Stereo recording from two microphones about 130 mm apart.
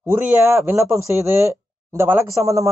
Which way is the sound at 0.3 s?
20° right (ahead or behind).